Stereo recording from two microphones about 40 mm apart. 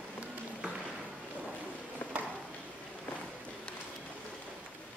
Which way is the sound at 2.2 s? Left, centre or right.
Right.